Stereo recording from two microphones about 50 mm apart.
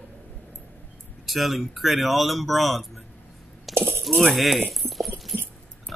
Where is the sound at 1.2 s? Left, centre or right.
Centre.